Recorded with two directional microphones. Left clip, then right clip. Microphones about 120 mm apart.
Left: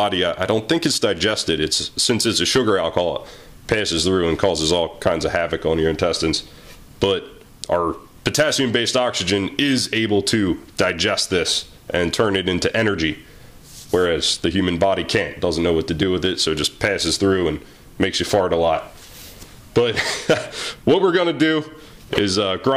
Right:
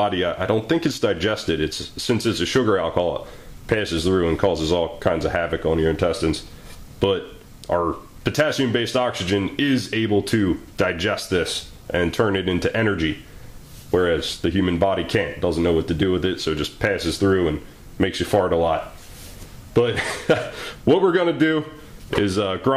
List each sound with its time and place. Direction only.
0.0 s a man's voice: 35° left (ahead or behind)